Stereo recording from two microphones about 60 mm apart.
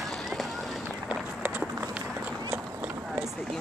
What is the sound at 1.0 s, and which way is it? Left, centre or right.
Run, right.